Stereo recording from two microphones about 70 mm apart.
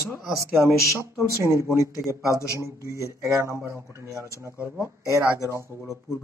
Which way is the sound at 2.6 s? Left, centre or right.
Right.